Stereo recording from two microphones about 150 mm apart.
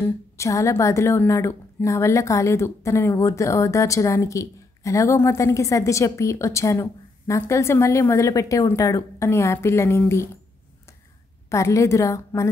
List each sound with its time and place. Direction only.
0.0 s a woman's voice: 20° left (ahead or behind)
11.4 s a woman's voice: 20° left (ahead or behind)